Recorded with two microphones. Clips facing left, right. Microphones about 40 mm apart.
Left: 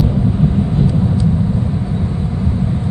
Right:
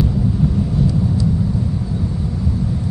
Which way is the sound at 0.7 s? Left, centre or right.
Left.